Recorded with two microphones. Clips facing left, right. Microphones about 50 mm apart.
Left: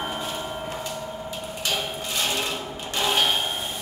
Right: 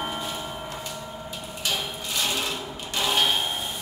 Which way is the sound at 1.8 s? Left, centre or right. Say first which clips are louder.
Left 2 dB; left.